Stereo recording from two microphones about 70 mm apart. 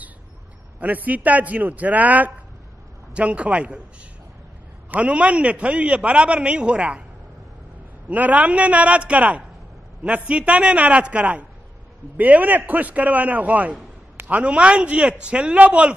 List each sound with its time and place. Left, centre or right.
0.7 s a man's voice: right
4.9 s a man's voice: centre
8.1 s a man's voice: right